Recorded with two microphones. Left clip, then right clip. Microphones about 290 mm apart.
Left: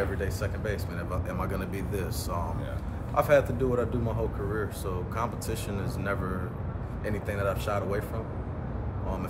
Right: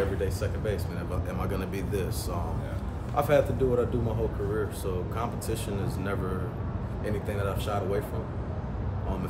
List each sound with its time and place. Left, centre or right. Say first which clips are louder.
0.2 s speech: right 2 dB; centre
3.2 s speech: left 1 dB; centre
5.1 s speech: even; centre